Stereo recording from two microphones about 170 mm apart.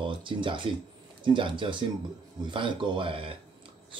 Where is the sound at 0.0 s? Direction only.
30° right (ahead or behind).